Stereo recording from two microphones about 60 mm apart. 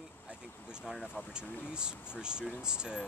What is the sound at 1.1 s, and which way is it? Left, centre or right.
Speech, left.